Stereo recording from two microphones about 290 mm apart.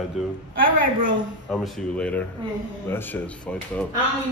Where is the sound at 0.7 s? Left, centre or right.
Right.